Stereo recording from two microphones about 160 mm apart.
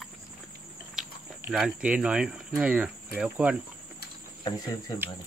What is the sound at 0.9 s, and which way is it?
Speech, 5° right (ahead or behind).